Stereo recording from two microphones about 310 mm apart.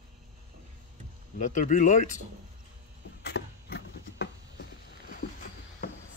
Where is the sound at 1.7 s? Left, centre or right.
Left.